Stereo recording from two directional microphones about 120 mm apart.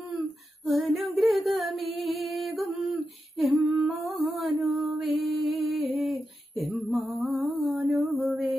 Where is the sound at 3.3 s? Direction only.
Centre (ahead or behind).